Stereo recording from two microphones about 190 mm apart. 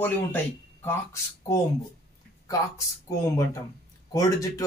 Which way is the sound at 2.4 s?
15° left (ahead or behind).